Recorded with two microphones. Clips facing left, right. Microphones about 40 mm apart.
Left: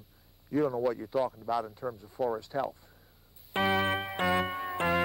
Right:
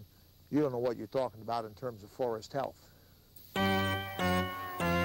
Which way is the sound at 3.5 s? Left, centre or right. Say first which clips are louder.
Left 4 dB; centre.